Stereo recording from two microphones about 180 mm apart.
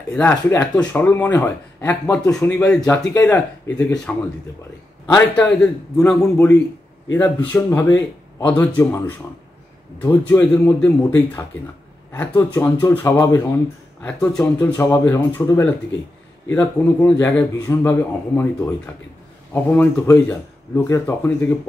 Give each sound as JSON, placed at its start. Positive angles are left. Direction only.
{"t": 0.1, "sound": "speech", "side_deg": 5}
{"t": 2.8, "sound": "speech", "side_deg": 15}